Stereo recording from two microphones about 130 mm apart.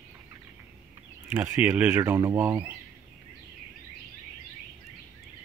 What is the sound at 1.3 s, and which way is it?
Speech, 15° right (ahead or behind).